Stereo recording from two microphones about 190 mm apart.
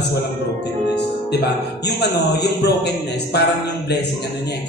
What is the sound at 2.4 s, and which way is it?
A man's voice, 60° left (ahead or behind).